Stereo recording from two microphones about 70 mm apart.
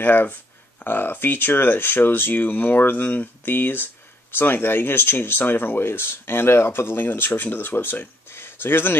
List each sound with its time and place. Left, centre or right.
0.0 s speech: left